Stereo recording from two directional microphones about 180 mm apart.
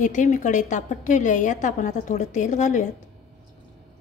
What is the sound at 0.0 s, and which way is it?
A woman's voice, 45° left (ahead or behind).